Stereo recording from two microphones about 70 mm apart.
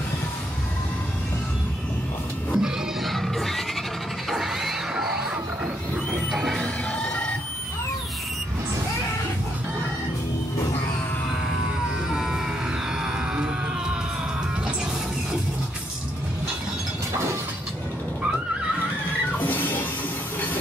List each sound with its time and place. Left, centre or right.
2.5 s music: centre
6.3 s music: centre
6.6 s music: centre
12.1 s a sound: centre
19.3 s music: left